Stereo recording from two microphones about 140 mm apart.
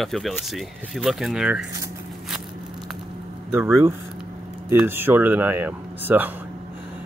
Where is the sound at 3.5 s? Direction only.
15° right (ahead or behind).